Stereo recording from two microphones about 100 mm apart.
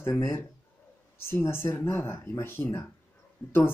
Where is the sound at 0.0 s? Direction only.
30° left (ahead or behind).